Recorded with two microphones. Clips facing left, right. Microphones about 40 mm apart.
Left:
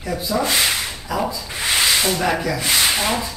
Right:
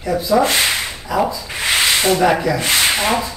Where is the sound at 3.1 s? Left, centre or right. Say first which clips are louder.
Right 4 dB; right.